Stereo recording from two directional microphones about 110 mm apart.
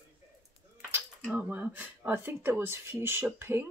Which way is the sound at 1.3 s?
15° right (ahead or behind).